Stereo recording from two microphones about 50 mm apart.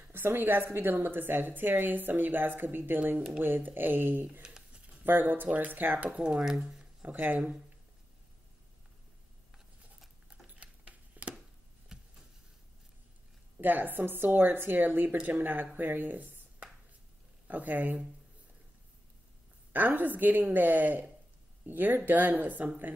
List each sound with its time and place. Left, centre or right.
0.1 s a woman's voice: right
6.2 s speech: centre
7.1 s a woman's voice: right
10.4 s a sound: right
11.9 s vehicle: centre
13.6 s a woman's voice: right
19.7 s a woman's voice: right